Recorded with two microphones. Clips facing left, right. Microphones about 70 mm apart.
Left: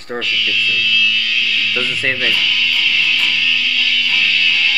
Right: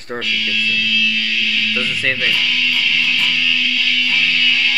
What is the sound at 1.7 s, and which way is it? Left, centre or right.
Speech, centre.